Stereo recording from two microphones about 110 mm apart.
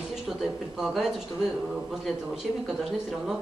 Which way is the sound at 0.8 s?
5° right (ahead or behind).